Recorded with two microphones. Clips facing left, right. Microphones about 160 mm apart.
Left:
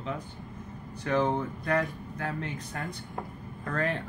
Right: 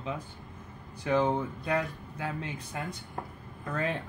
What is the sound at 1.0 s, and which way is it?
Speech, 10° right (ahead or behind).